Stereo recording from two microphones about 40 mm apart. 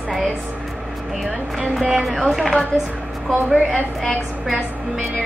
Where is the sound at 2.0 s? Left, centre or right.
Centre.